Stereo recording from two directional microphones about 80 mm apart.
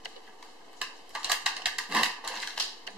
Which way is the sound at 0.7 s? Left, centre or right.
Centre.